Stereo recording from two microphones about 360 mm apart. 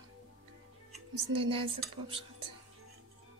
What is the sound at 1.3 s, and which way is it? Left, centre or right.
Speech, centre.